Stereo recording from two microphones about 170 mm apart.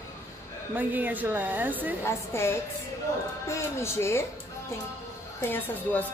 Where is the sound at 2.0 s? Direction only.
15° left (ahead or behind).